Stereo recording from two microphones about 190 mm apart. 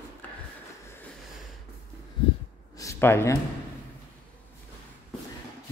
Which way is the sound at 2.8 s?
15° left (ahead or behind).